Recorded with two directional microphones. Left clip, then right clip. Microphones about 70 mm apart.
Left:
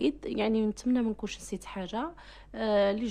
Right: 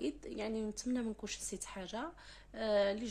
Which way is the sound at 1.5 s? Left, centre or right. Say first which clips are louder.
Left 8 dB; left.